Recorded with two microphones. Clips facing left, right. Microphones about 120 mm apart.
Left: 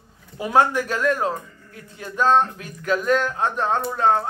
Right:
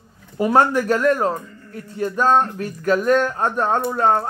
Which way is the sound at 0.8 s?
45° right (ahead or behind).